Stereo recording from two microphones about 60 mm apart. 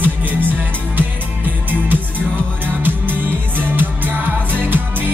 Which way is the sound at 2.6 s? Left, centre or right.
Right.